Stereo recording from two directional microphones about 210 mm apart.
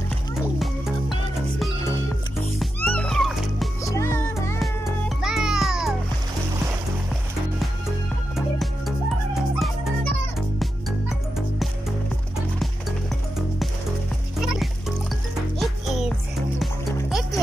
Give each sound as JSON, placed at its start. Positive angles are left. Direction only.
{"t": 0.6, "sound": "music", "side_deg": 0}
{"t": 2.6, "sound": "music", "side_deg": 5}
{"t": 3.8, "sound": "music", "side_deg": 15}
{"t": 5.2, "sound": "music", "side_deg": -5}
{"t": 8.4, "sound": "music", "side_deg": 0}
{"t": 15.6, "sound": "music", "side_deg": 0}